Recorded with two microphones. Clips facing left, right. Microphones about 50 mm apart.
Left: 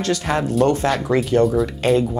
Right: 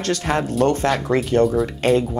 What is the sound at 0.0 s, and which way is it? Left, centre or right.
Speech, right.